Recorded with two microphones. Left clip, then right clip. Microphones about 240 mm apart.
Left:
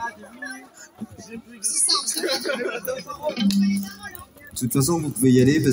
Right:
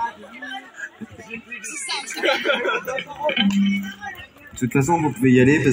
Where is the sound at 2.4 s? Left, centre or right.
Right.